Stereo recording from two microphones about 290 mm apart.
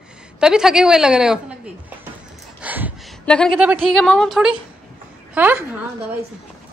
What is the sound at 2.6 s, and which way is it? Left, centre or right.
A woman's voice, centre.